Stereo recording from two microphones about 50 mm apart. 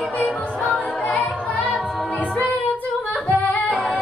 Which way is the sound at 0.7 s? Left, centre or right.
Centre.